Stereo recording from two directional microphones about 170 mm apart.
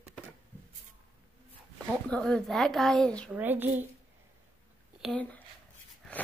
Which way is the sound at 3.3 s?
10° right (ahead or behind).